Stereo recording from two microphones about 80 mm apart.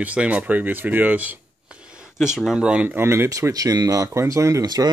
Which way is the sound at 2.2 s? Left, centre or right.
Centre.